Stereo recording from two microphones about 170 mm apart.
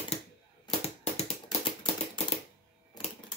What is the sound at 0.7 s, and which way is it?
Typewriter, 35° left (ahead or behind).